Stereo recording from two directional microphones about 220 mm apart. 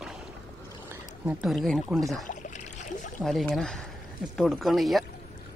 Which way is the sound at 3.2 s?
Centre (ahead or behind).